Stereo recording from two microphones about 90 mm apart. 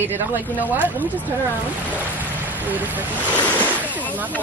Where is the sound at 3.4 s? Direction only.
15° left (ahead or behind).